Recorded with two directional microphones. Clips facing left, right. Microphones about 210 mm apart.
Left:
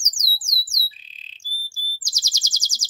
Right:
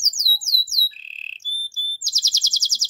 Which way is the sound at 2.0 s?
15° left (ahead or behind).